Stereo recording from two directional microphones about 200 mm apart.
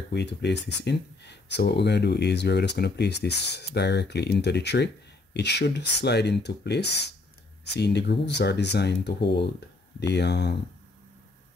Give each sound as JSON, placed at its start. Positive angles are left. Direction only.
{"t": 0.1, "sound": "speech", "side_deg": 60}